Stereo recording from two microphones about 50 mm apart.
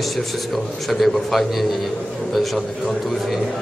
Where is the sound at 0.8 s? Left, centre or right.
Centre.